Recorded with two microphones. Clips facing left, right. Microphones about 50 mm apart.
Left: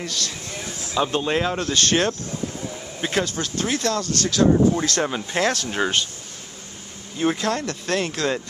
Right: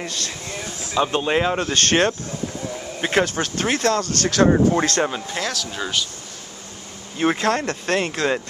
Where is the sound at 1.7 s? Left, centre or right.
Right.